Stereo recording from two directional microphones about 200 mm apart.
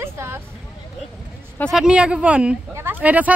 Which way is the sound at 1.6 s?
Centre (ahead or behind).